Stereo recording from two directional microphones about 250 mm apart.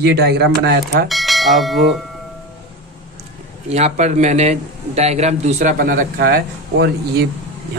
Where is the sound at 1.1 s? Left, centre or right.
Centre.